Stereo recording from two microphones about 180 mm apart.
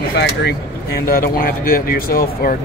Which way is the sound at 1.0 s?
55° left (ahead or behind).